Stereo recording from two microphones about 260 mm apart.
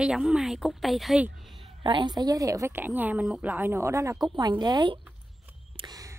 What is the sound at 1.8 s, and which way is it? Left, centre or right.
A woman's voice, centre.